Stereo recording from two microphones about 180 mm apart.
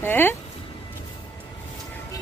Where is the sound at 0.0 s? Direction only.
10° left (ahead or behind).